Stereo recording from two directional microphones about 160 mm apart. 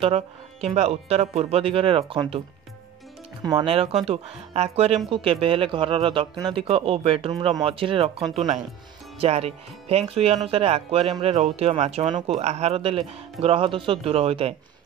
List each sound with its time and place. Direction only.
0.0 s speech: 40° right (ahead or behind)
3.6 s speech: 35° right (ahead or behind)
12.1 s speech: 30° right (ahead or behind)
12.4 s speech: 40° right (ahead or behind)